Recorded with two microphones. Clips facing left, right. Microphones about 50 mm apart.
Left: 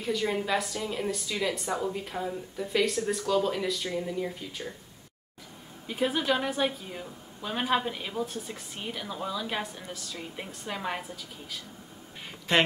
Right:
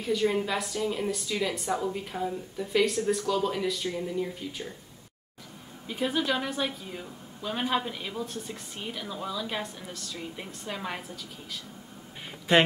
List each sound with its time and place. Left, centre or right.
0.3 s a woman's voice: centre
5.9 s a woman's voice: centre